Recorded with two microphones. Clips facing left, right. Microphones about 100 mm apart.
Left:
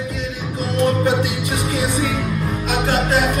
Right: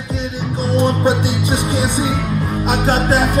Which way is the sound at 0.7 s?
25° right (ahead or behind).